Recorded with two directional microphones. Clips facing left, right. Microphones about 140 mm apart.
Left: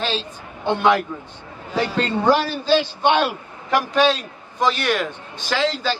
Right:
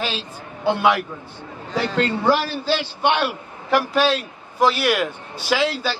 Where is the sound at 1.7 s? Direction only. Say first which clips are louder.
Even; 10° left (ahead or behind).